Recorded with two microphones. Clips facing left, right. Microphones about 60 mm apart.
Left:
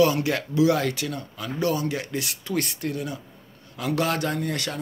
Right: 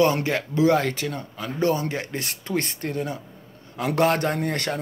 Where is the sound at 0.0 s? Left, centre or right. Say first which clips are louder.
Even; right.